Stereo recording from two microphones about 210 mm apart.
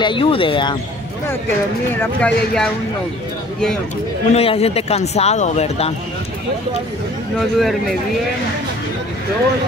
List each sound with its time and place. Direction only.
0.0 s a man's voice: 25° left (ahead or behind)
2.0 s speech: 5° left (ahead or behind)
4.3 s a man's voice: 30° left (ahead or behind)
7.3 s speech: centre (ahead or behind)